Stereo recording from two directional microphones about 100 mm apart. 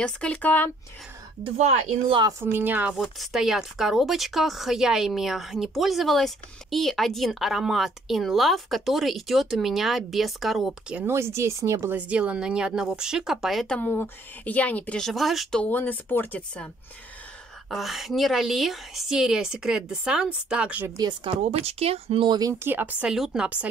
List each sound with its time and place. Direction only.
0.0 s a woman's voice: 10° left (ahead or behind)
1.4 s speech: 90° right
2.4 s speech: 20° right (ahead or behind)
2.9 s speech: 5° right (ahead or behind)
11.1 s speech: 25° right (ahead or behind)
12.0 s speech: 10° right (ahead or behind)
13.7 s a woman's voice: 15° left (ahead or behind); by 15.6 s centre (ahead or behind)
15.6 s a woman's voice: 15° left (ahead or behind)
17.6 s speech: centre (ahead or behind)
21.2 s speech: 90° right; by 22.3 s 70° right (ahead or behind)
22.3 s speech: 35° right (ahead or behind)
22.6 s speech: 20° right (ahead or behind)